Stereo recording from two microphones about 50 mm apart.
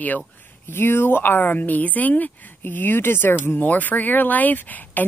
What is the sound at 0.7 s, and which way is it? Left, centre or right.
Speech, left.